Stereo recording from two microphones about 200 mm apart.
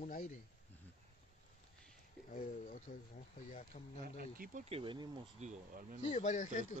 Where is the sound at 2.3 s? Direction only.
40° left (ahead or behind).